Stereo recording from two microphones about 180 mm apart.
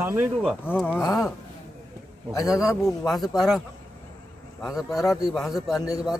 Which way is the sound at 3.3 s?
Centre (ahead or behind).